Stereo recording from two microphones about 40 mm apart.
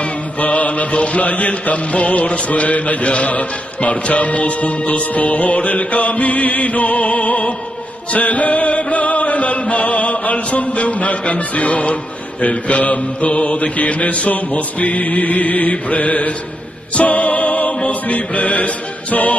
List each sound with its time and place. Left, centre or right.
0.0 s music: left